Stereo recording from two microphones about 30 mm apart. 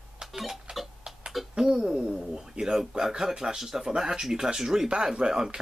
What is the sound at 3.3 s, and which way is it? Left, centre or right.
Speech, right.